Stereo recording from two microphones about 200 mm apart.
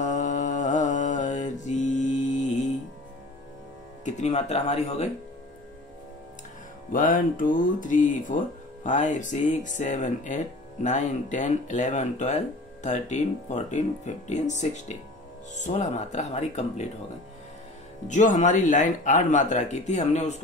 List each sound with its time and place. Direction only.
0.0 s mantra: 40° left (ahead or behind)
4.0 s speech: 35° left (ahead or behind)
6.9 s speech: 40° left (ahead or behind)
18.0 s speech: 40° left (ahead or behind)